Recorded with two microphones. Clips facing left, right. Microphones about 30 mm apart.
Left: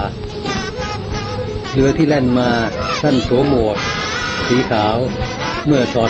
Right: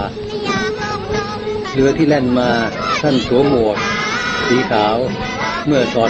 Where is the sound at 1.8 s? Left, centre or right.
Centre.